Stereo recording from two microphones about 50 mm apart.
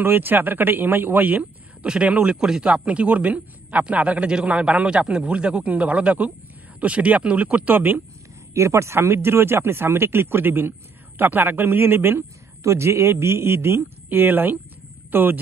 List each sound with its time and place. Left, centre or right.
0.0 s speech: right
1.9 s speech: right
8.5 s a man's voice: right
12.6 s speech: right
14.0 s speech: right